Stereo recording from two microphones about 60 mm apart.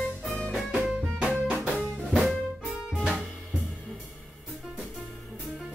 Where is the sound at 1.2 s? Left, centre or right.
Centre.